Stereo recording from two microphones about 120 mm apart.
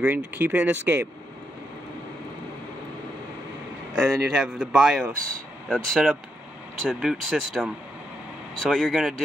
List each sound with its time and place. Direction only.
0.0 s speech: 15° right (ahead or behind)
3.9 s speech: 5° right (ahead or behind)